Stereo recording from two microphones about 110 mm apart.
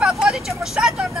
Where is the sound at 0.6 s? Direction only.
5° right (ahead or behind).